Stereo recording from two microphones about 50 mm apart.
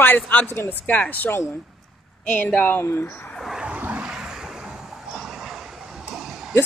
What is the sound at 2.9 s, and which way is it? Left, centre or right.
Speech, left.